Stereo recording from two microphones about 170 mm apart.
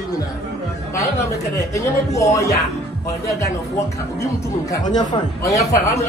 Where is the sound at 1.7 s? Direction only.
20° left (ahead or behind).